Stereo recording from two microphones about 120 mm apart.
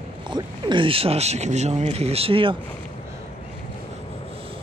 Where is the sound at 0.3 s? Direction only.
40° right (ahead or behind).